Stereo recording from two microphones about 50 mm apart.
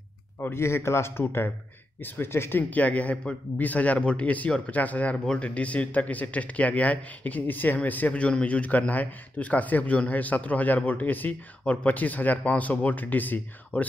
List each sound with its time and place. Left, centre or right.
0.4 s a man's voice: left
2.0 s speech: left
2.7 s a man's voice: left
8.1 s a man's voice: left